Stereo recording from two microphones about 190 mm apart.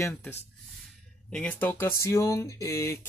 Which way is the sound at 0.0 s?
10° left (ahead or behind).